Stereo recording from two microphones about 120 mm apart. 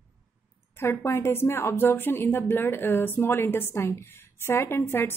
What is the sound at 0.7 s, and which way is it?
Speech, 20° left (ahead or behind).